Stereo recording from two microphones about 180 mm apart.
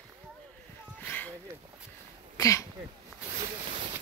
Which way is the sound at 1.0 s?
10° left (ahead or behind).